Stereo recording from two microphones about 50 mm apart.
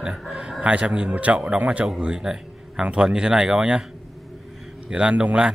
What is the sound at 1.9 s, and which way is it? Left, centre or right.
Speech, centre.